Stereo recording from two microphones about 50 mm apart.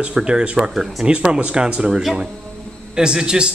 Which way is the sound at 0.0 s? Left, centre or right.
Centre.